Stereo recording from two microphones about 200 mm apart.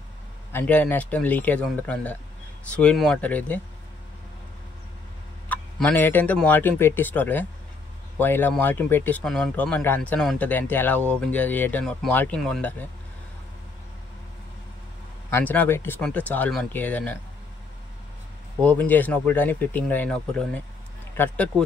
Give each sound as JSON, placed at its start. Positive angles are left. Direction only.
{"t": 0.5, "sound": "speech", "side_deg": 10}
{"t": 5.5, "sound": "speech", "side_deg": 5}
{"t": 15.3, "sound": "speech", "side_deg": 10}
{"t": 18.6, "sound": "speech", "side_deg": 5}